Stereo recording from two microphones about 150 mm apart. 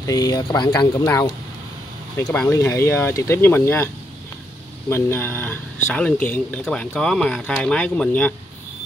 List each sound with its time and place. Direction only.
0.0 s speech: 25° left (ahead or behind)
2.3 s speech: 15° left (ahead or behind)